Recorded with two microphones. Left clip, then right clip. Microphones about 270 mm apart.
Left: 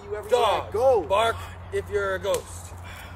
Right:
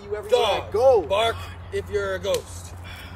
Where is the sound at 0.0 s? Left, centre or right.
Centre.